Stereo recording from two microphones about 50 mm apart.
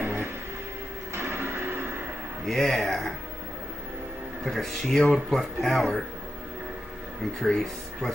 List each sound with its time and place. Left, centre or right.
0.0 s music: right
2.4 s speech: centre
4.5 s speech: centre
7.3 s speech: centre